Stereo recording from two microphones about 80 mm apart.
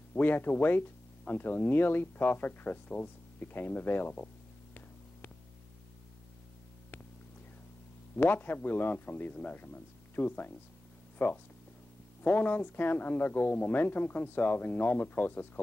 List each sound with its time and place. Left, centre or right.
0.1 s speech: left
8.2 s speech: left